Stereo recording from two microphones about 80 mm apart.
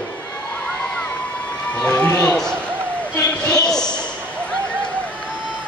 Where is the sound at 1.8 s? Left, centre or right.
Centre.